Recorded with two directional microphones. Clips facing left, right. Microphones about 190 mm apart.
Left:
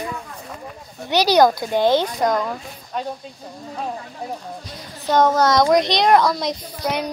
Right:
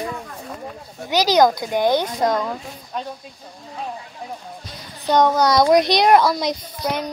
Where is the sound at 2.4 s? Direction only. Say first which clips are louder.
Even; 5° right (ahead or behind).